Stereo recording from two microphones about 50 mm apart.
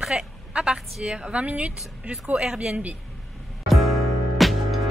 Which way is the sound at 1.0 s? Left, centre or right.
Right.